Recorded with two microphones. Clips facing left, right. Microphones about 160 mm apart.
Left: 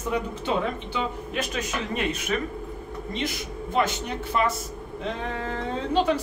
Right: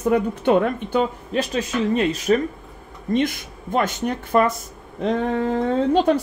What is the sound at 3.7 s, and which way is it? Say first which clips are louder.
Speech: right 4 dB; 50° right (ahead or behind).